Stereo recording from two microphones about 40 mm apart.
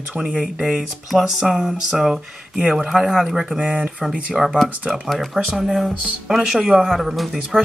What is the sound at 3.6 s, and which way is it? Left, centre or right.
Speech, right.